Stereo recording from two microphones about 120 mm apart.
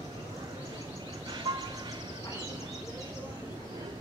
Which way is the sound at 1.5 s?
30° right (ahead or behind).